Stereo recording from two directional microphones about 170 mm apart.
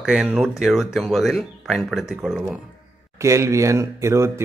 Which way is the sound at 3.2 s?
15° right (ahead or behind).